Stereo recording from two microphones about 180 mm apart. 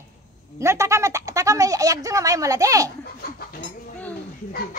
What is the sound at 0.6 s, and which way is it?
Speech, 15° right (ahead or behind).